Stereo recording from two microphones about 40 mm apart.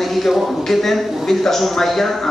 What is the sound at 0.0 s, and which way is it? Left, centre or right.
A man's voice, centre.